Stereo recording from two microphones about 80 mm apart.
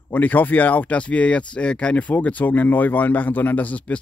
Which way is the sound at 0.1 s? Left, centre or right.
Left.